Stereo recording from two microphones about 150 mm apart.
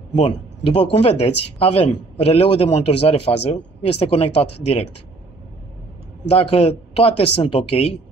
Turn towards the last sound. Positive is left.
turn(degrees=40)  # may be behind; listen again after turning